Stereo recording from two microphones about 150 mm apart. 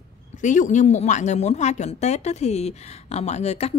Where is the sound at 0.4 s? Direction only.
55° left (ahead or behind).